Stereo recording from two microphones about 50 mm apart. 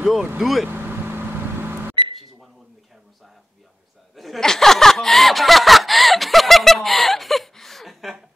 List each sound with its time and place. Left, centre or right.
0.4 s speech: centre
0.7 s vehicle: right
4.1 s chuckle: centre
4.4 s snicker: centre